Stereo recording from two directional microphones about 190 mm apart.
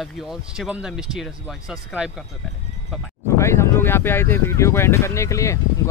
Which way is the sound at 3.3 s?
15° left (ahead or behind).